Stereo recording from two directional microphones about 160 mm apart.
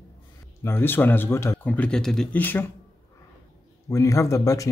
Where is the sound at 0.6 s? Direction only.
15° left (ahead or behind).